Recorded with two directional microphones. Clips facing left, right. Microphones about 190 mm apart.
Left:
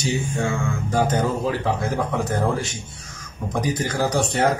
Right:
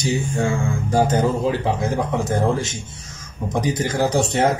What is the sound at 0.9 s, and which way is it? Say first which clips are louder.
Speech: right 3 dB; 30° right (ahead or behind).